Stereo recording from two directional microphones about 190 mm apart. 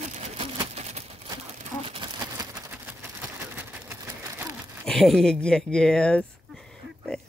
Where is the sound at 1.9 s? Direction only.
25° right (ahead or behind).